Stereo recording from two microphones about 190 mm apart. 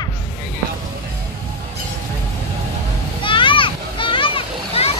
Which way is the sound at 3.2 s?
25° left (ahead or behind).